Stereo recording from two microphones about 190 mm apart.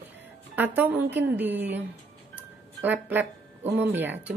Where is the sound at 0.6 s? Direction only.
10° right (ahead or behind).